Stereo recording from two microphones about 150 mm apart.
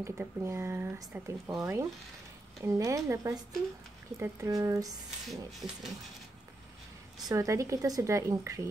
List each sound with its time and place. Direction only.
0.0 s a woman's voice: 20° right (ahead or behind)
5.2 s a sound: centre (ahead or behind)
7.2 s a woman's voice: 20° right (ahead or behind)